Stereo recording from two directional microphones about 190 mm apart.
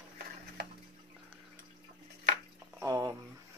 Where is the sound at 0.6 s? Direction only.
60° right (ahead or behind).